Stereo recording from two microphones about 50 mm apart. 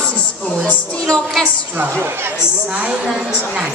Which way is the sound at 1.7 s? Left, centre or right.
Right.